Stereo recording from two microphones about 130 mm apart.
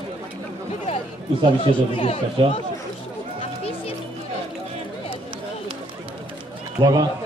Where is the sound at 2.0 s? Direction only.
50° left (ahead or behind).